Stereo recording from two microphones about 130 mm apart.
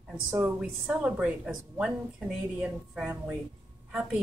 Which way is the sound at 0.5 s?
5° right (ahead or behind).